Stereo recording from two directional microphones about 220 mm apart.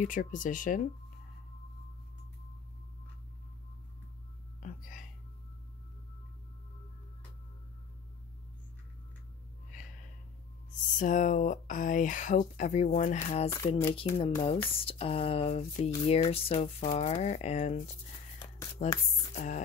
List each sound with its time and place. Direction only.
0.0 s speech: 35° left (ahead or behind)
4.6 s music: 35° left (ahead or behind)
9.7 s gasp: 35° left (ahead or behind)
11.0 s speech: 35° left (ahead or behind)
19.3 s speech: 35° left (ahead or behind)